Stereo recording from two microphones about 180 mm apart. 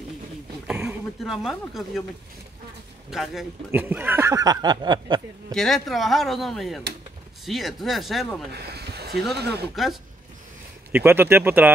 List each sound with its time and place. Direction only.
0.7 s speech: 5° right (ahead or behind)
3.1 s speech: centre (ahead or behind); by 5.2 s 25° right (ahead or behind)
5.5 s speech: centre (ahead or behind)
8.5 s a sound: 65° right (ahead or behind)
9.8 s speech: centre (ahead or behind)